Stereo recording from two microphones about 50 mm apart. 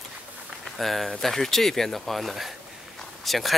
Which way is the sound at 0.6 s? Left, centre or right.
Centre.